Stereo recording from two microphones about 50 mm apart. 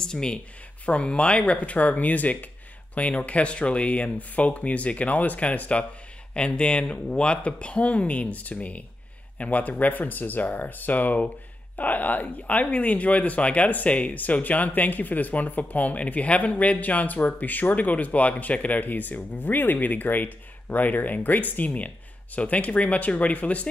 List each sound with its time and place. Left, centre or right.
0.0 s speech: centre